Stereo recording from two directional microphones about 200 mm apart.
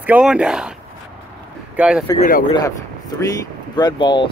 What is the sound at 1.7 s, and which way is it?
Speech, 5° right (ahead or behind).